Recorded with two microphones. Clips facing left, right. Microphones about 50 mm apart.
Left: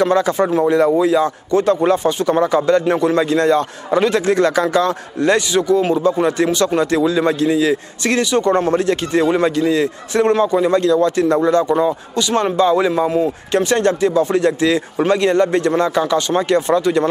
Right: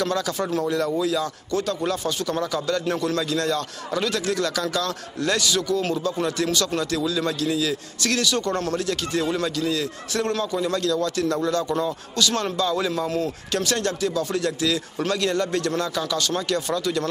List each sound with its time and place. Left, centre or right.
0.0 s a man's voice: left